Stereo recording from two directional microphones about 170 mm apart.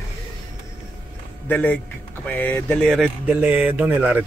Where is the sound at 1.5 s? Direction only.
10° left (ahead or behind).